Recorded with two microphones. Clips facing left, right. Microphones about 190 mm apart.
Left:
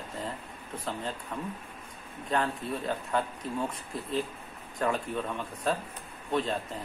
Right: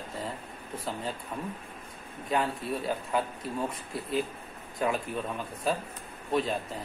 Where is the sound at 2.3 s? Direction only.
10° right (ahead or behind).